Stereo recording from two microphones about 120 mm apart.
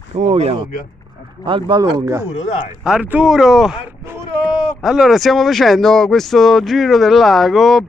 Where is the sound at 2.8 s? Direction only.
10° right (ahead or behind).